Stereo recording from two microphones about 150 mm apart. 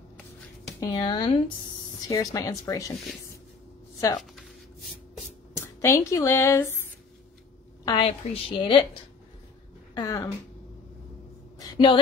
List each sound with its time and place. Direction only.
0.7 s a woman's voice: 30° left (ahead or behind)
5.8 s a woman's voice: 20° left (ahead or behind)
7.8 s a woman's voice: 35° left (ahead or behind)
9.9 s speech: 20° left (ahead or behind)
11.6 s a sound: 30° left (ahead or behind)